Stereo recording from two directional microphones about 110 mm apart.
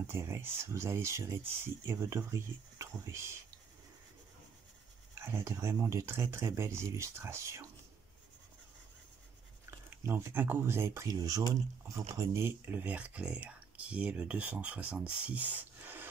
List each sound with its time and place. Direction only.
0.0 s speech: 25° right (ahead or behind)
5.1 s speech: 25° right (ahead or behind)
9.7 s speech: 20° right (ahead or behind)
12.2 s speech: 20° right (ahead or behind)